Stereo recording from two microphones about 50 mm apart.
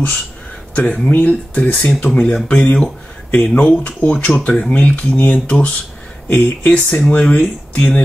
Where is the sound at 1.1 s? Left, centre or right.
Left.